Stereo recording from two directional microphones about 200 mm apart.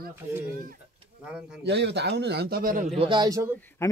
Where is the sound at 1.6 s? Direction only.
60° right (ahead or behind).